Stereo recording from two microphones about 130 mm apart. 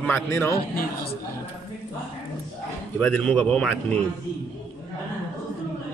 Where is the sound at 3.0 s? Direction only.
5° left (ahead or behind).